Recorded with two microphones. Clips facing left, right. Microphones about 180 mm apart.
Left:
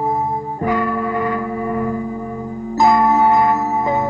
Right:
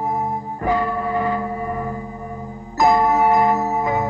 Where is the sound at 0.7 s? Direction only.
30° right (ahead or behind).